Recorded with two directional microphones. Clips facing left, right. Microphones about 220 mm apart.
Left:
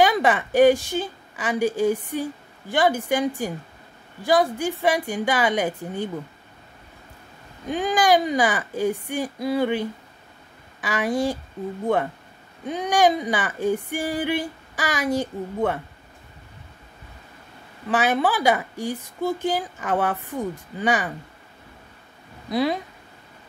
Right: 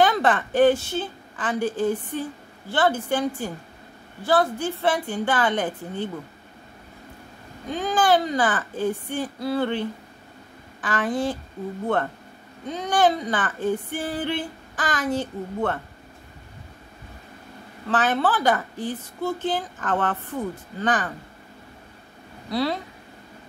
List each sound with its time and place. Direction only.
0.0 s a woman's voice: 10° left (ahead or behind)
7.6 s a woman's voice: 15° left (ahead or behind)
12.6 s a woman's voice: 15° left (ahead or behind)
17.8 s a woman's voice: 10° left (ahead or behind)
22.5 s a woman's voice: 15° left (ahead or behind)